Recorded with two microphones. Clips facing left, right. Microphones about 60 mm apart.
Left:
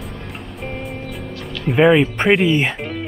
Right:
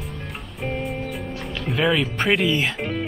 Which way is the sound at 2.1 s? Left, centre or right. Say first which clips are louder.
Left 5 dB; centre.